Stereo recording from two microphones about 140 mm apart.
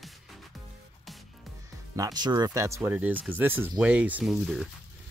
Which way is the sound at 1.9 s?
25° right (ahead or behind).